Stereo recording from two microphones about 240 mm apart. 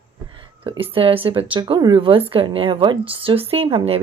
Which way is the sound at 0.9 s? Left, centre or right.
Right.